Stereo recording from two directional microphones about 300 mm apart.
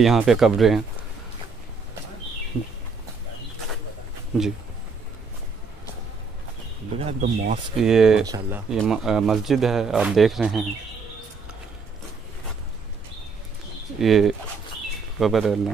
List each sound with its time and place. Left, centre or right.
0.0 s speech: centre
4.3 s speech: centre
7.1 s speech: right
7.8 s speech: centre
13.9 s speech: centre